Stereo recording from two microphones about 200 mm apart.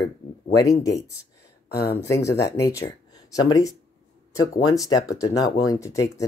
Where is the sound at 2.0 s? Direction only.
15° left (ahead or behind).